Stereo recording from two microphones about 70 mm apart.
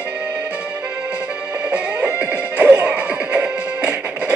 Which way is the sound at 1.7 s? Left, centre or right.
Right.